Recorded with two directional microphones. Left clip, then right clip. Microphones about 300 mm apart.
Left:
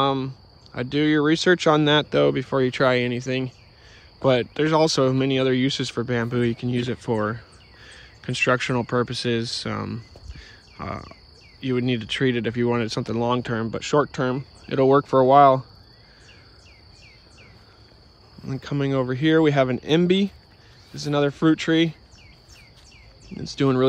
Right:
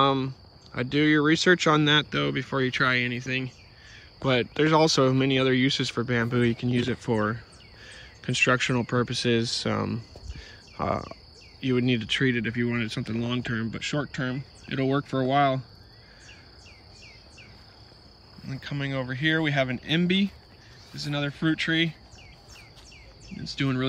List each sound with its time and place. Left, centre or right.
0.0 s speech: centre
18.5 s speech: left
23.4 s speech: centre